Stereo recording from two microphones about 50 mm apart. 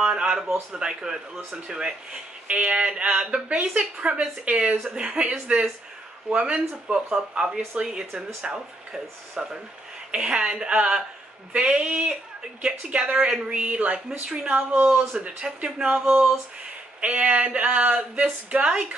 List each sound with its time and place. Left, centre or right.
0.0 s speech: centre
2.4 s speech: right
14.5 s speech: right
15.1 s speech: centre
17.0 s speech: right